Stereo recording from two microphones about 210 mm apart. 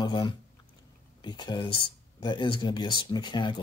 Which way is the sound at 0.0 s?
20° left (ahead or behind).